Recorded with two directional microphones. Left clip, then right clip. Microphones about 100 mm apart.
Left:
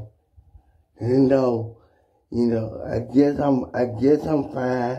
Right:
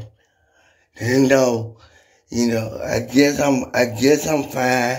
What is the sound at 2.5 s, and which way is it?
Speech, 20° right (ahead or behind).